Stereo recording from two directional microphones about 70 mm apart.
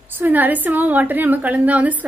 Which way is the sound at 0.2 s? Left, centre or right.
Right.